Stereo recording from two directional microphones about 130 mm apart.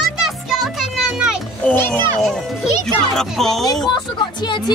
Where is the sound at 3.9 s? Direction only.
35° left (ahead or behind).